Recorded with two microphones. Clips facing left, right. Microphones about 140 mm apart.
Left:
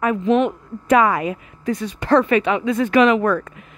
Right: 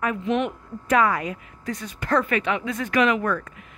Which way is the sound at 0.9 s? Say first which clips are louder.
Left 5 dB; 20° left (ahead or behind).